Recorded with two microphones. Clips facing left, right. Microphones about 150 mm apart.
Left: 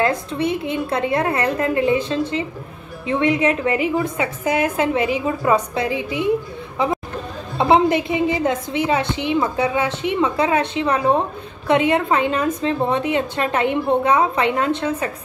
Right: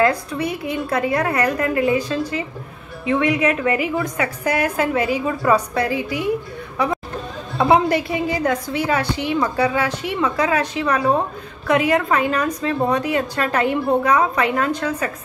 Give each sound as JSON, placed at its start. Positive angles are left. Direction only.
{"t": 0.0, "sound": "a woman's voice", "side_deg": 25}
{"t": 7.5, "sound": "a woman's voice", "side_deg": 20}